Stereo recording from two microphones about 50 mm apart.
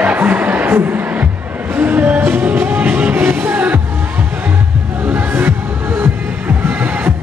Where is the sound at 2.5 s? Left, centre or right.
Right.